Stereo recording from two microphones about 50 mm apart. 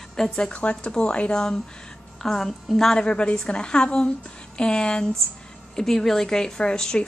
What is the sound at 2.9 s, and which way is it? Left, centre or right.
Speech, left.